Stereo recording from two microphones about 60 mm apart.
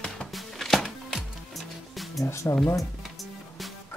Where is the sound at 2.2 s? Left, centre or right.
Left.